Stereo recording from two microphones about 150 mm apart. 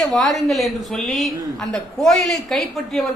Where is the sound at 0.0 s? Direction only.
5° left (ahead or behind).